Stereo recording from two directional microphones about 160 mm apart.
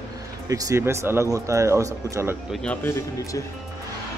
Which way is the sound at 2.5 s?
5° left (ahead or behind).